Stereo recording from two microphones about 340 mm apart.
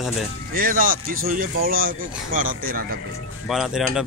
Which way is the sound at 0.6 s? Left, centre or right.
Right.